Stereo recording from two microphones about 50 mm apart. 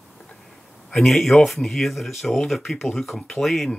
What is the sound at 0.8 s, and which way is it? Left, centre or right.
Speech, centre.